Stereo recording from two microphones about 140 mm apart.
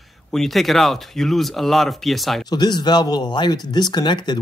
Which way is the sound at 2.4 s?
30° left (ahead or behind).